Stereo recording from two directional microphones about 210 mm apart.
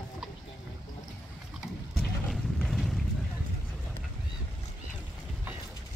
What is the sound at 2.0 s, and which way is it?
Boat, centre (ahead or behind).